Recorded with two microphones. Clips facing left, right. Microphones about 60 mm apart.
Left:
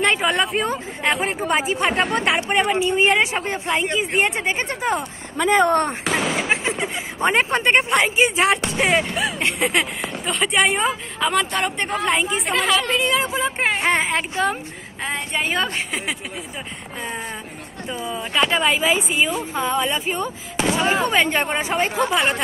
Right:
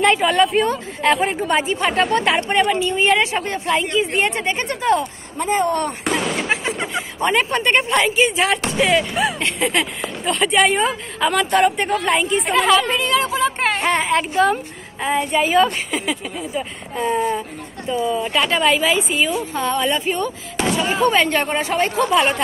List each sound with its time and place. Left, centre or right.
0.0 s speech: centre
5.4 s speech: left
5.7 s speech: left
6.0 s artillery fire: centre
6.5 s a sound: left
7.2 s speech: left
9.1 s speech: centre
13.0 s speech: centre
13.7 s speech: centre
17.0 s speech: centre
18.5 s speech: centre